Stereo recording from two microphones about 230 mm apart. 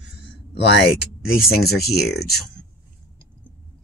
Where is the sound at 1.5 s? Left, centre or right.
Left.